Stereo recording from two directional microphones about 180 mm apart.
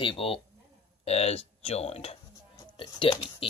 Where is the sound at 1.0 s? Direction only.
35° left (ahead or behind).